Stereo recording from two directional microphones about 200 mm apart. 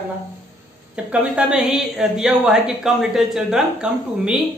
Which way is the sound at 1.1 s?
5° right (ahead or behind).